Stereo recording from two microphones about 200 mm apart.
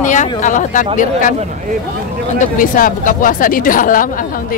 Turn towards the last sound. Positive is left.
turn(degrees=40)  # may be behind; listen again after turning